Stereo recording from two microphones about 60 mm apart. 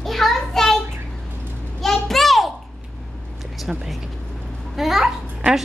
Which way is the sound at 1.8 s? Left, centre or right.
Centre.